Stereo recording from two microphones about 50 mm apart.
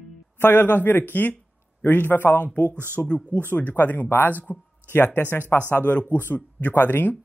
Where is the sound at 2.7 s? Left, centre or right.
Right.